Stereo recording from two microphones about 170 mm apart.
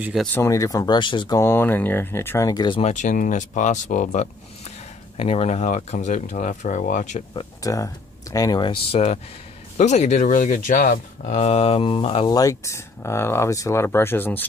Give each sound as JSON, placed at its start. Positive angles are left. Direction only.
{"t": 0.0, "sound": "speech", "side_deg": 0}
{"t": 0.3, "sound": "speech", "side_deg": 15}
{"t": 1.4, "sound": "speech", "side_deg": 15}
{"t": 2.8, "sound": "speech", "side_deg": 45}
{"t": 7.6, "sound": "speech", "side_deg": 20}
{"t": 12.3, "sound": "speech", "side_deg": 20}